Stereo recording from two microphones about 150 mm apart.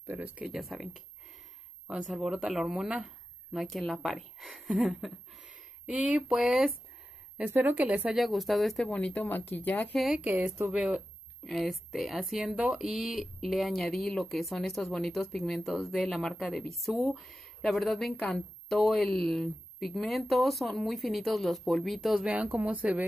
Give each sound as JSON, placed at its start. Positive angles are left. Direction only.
{"t": 0.0, "sound": "speech", "side_deg": -10}
{"t": 7.3, "sound": "speech", "side_deg": -15}
{"t": 9.9, "sound": "speech", "side_deg": 0}